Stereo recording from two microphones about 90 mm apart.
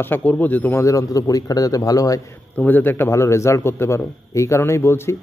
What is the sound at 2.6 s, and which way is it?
Speech, 20° left (ahead or behind).